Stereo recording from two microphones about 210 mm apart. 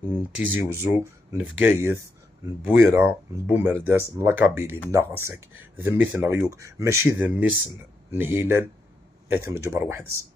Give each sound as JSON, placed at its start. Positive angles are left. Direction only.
{"t": 0.6, "sound": "speech", "side_deg": -10}